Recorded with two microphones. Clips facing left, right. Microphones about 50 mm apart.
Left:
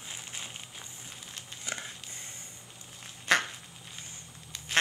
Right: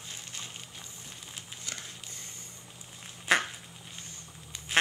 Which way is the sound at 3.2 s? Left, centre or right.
Centre.